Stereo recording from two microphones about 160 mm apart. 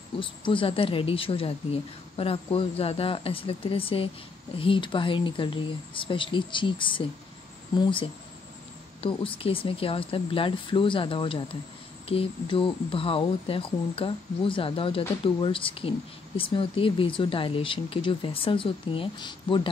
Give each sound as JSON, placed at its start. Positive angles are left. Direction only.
{"t": 0.2, "sound": "speech", "side_deg": 30}